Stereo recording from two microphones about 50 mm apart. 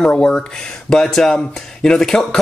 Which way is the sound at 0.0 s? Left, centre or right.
Left.